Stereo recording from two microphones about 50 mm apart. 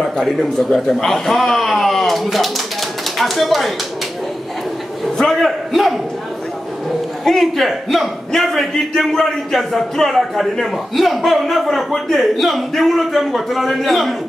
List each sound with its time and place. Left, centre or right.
0.0 s a man's voice: centre
5.1 s a man's voice: centre
7.2 s a man's voice: centre